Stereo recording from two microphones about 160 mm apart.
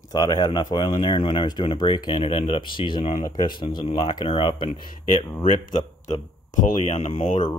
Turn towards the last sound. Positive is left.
turn(degrees=35)  # may be behind; listen again after turning